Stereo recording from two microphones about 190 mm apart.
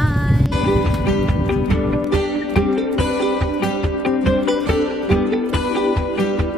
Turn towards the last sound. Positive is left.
turn(degrees=0)  # may be behind; listen again after turning